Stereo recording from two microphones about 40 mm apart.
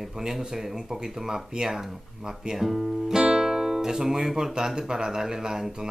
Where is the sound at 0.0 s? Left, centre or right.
Centre.